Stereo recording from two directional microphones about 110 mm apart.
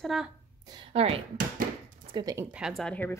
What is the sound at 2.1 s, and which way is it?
Speech, 45° right (ahead or behind).